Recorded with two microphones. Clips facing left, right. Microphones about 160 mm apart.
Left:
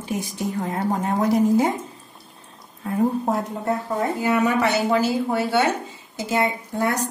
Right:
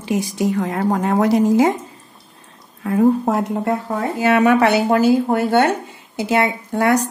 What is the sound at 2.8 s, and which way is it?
Speech, 90° right.